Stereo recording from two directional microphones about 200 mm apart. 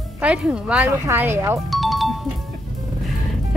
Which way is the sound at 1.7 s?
Centre (ahead or behind).